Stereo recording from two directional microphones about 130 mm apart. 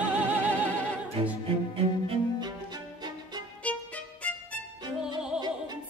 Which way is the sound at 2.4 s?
30° right (ahead or behind).